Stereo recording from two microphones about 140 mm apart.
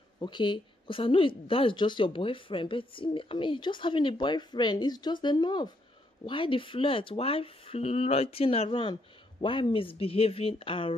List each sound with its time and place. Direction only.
0.2 s speech: 35° left (ahead or behind)